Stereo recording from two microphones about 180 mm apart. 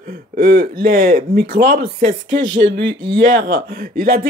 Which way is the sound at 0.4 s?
55° right (ahead or behind).